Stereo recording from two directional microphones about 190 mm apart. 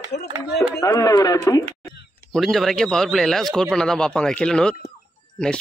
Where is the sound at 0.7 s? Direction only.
15° left (ahead or behind).